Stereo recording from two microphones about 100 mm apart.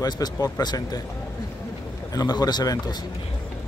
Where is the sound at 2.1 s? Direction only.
45° left (ahead or behind).